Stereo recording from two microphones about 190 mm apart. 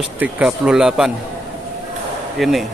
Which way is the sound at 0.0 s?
5° right (ahead or behind).